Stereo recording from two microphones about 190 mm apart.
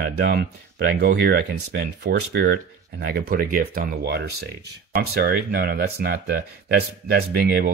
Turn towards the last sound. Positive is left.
turn(degrees=-55)  # may be behind; listen again after turning